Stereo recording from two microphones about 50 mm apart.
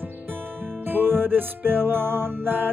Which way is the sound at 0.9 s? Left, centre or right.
Right.